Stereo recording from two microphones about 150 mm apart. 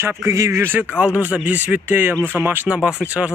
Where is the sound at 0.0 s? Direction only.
20° right (ahead or behind).